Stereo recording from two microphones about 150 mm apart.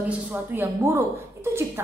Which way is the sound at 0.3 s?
10° right (ahead or behind).